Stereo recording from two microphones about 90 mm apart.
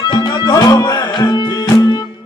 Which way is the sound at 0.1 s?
45° left (ahead or behind).